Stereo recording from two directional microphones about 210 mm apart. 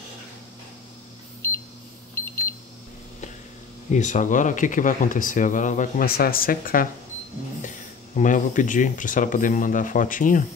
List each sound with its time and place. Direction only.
2.1 s cash register: 10° left (ahead or behind)
3.9 s speech: 35° left (ahead or behind)
8.2 s speech: 35° left (ahead or behind)